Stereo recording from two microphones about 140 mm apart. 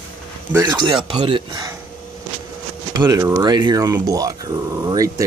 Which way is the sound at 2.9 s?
25° right (ahead or behind).